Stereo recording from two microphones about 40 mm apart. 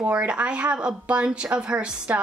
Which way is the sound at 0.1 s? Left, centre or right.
Right.